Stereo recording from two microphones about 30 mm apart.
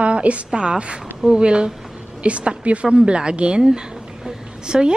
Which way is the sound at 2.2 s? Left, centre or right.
Right.